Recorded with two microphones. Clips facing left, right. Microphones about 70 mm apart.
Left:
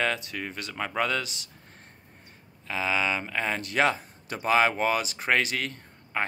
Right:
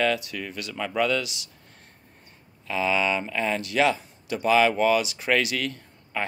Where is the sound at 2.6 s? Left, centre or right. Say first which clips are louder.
Right 3 dB; left.